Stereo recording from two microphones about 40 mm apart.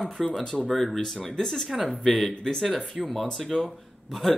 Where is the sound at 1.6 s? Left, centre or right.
Centre.